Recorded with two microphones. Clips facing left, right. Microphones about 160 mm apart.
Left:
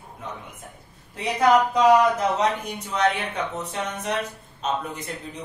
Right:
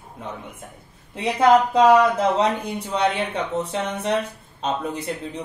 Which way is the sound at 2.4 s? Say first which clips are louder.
Right 3 dB; 30° right (ahead or behind).